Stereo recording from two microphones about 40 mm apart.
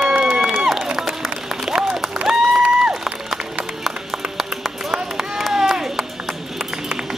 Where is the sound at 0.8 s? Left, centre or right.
Centre.